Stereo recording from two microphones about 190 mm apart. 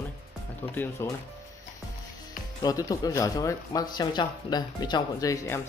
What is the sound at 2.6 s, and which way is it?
Speech, 20° left (ahead or behind).